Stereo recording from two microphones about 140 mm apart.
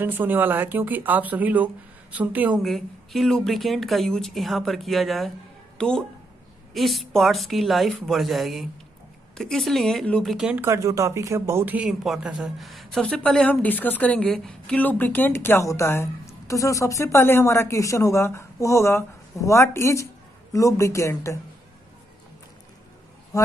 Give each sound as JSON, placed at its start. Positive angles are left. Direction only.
{"t": 0.0, "sound": "speech", "side_deg": -15}
{"t": 2.6, "sound": "a woman's voice", "side_deg": 0}
{"t": 10.6, "sound": "speech", "side_deg": -25}
{"t": 23.3, "sound": "speech", "side_deg": 25}